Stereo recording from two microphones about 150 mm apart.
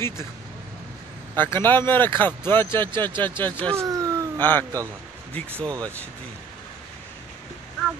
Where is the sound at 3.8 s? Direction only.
20° right (ahead or behind).